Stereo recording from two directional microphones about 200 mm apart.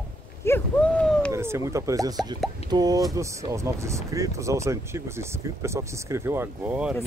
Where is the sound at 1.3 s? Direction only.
15° right (ahead or behind).